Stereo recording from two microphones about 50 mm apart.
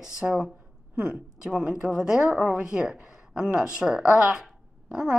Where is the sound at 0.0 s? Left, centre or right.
Centre.